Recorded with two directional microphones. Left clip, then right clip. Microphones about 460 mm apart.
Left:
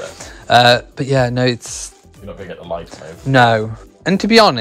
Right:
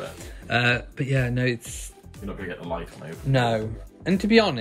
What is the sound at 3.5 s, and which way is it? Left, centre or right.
Speech, centre.